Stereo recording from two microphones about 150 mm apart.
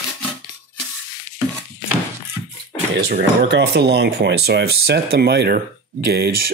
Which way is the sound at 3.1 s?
90° right.